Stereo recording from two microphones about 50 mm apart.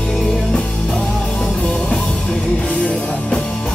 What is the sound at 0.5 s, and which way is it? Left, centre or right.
Music, centre.